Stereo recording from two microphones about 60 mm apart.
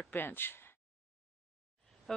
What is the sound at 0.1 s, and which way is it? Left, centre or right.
Speech, left.